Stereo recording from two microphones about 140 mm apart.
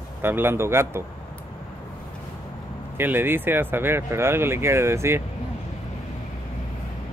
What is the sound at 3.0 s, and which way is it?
Speech, 15° right (ahead or behind).